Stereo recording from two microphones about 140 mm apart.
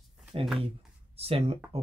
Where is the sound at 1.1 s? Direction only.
45° right (ahead or behind).